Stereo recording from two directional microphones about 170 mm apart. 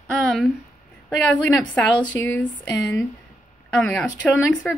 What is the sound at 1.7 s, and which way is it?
Speech, 10° left (ahead or behind).